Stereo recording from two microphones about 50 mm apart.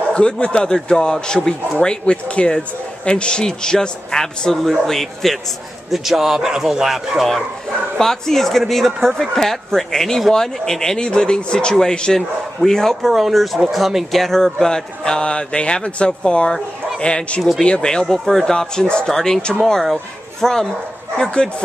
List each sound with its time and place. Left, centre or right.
0.1 s a man's voice: left; by 7.2 s centre
8.0 s a man's voice: centre
17.4 s speech: centre
17.6 s a man's voice: centre
18.0 s a man's voice: centre
21.2 s a man's voice: centre